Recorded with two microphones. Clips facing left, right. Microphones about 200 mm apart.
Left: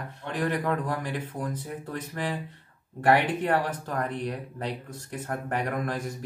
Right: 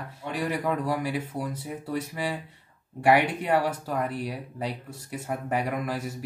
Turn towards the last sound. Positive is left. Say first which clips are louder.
# even
turn(degrees=-10)  # may be behind; listen again after turning